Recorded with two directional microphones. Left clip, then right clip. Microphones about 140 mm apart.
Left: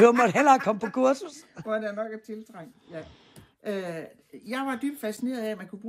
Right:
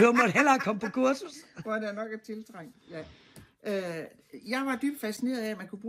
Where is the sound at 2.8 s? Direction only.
10° left (ahead or behind).